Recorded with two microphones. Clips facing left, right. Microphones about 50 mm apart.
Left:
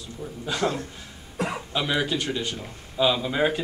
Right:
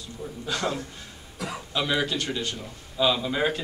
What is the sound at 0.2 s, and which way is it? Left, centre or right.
Speech, centre.